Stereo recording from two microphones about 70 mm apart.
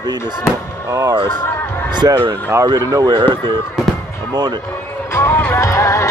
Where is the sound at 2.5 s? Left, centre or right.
Right.